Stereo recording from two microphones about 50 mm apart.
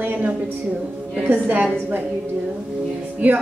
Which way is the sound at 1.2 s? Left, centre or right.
Right.